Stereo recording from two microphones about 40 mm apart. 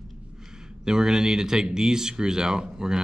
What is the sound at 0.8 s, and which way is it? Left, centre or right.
Speech, centre.